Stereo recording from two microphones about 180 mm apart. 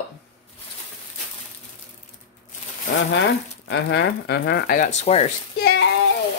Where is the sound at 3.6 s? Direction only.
80° left.